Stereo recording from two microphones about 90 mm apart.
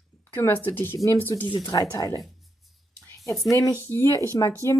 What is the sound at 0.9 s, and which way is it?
A woman's voice, 35° left (ahead or behind).